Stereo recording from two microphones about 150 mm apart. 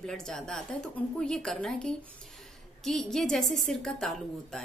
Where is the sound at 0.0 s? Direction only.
5° left (ahead or behind).